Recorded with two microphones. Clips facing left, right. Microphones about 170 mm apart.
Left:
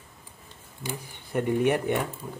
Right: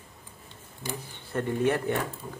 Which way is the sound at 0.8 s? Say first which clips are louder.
Left 1 dB; 15° left (ahead or behind).